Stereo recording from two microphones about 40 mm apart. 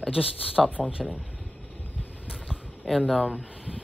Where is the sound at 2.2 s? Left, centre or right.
Right.